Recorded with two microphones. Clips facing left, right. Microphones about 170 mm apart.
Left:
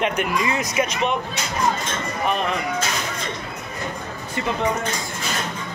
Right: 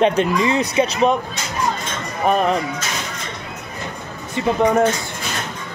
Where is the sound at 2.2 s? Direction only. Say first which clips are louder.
Right 7 dB; 40° right (ahead or behind).